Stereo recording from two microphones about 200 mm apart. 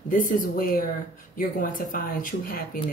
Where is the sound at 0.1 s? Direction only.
45° left (ahead or behind).